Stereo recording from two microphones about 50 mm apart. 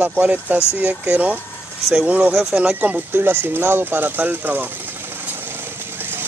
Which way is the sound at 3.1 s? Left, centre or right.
Right.